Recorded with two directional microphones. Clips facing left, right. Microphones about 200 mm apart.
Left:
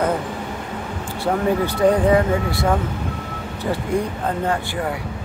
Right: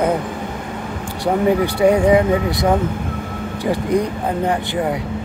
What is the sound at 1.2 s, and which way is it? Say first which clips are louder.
Speech: right 3 dB; 15° right (ahead or behind).